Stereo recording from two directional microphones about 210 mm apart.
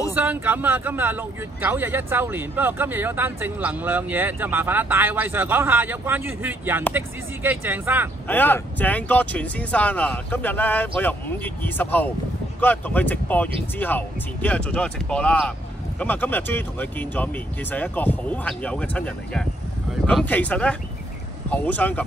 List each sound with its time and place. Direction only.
0.1 s speech: 10° right (ahead or behind)
8.3 s speech: 10° left (ahead or behind)